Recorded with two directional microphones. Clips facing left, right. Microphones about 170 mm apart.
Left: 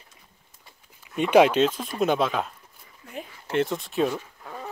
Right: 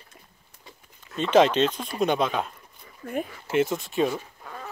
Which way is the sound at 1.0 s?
10° left (ahead or behind).